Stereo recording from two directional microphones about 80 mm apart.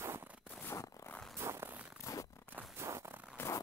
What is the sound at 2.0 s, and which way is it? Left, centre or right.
Zipper, left.